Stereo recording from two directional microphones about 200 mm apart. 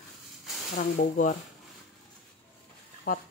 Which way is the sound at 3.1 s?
45° left (ahead or behind).